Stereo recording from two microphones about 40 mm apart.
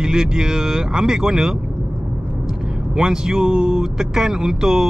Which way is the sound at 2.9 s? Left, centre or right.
Centre.